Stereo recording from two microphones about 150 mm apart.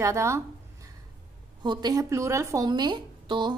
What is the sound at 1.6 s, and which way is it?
A woman's voice, 30° right (ahead or behind).